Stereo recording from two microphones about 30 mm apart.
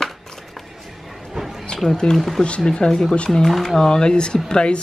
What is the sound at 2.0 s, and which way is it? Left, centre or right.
Speech, left.